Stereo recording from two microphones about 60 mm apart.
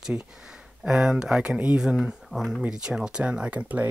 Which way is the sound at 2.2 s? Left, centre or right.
Centre.